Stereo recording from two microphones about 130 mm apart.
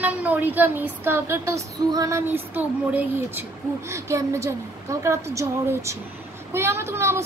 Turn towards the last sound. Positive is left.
turn(degrees=-20)  # may be behind; listen again after turning